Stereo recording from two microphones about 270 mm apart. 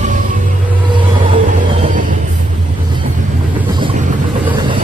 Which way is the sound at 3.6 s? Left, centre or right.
Centre.